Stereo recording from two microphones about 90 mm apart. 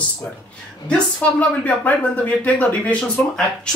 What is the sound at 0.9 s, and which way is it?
Speech, 15° left (ahead or behind).